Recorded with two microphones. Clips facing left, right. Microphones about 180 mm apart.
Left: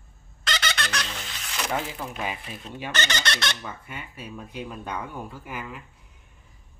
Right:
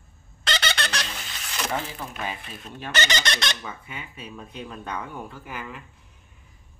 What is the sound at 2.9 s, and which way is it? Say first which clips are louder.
Speech: right 3 dB; 10° right (ahead or behind).